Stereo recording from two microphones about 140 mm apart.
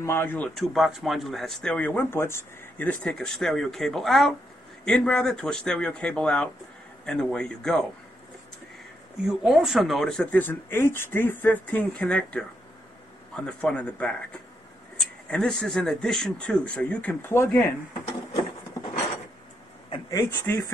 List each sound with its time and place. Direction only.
0.0 s speech: 15° left (ahead or behind)
0.6 s speech: centre (ahead or behind)
9.3 s speech: 5° right (ahead or behind)
10.4 s speech: 15° left (ahead or behind)
15.2 s speech: 5° left (ahead or behind)
19.9 s speech: 25° left (ahead or behind)